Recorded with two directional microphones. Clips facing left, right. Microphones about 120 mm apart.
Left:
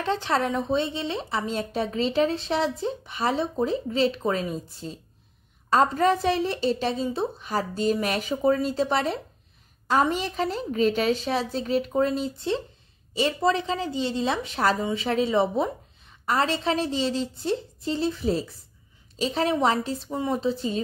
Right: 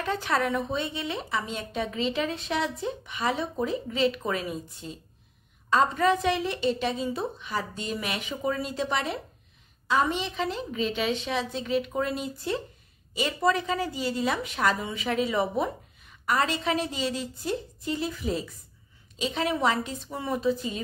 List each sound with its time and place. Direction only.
0.0 s a woman's voice: 30° left (ahead or behind)